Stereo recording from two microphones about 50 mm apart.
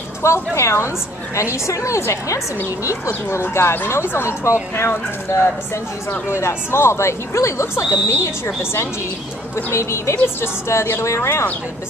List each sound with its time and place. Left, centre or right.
0.2 s a woman's voice: left
1.3 s a woman's voice: left
3.3 s a woman's voice: left
4.2 s speech: left
4.7 s a woman's voice: left
6.3 s speech: left
9.7 s speech: left
10.1 s a woman's voice: left